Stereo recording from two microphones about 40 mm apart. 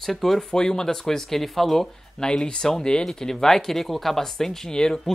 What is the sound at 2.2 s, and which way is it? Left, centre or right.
Speech, left.